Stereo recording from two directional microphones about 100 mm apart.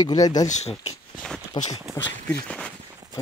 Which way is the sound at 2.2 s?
10° left (ahead or behind).